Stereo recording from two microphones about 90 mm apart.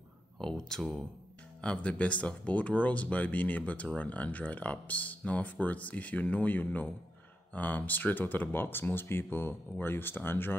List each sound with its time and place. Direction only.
0.4 s speech: 5° left (ahead or behind); by 10.5 s 25° left (ahead or behind)